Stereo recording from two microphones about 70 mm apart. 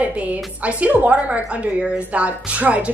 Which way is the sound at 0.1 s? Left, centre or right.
Centre.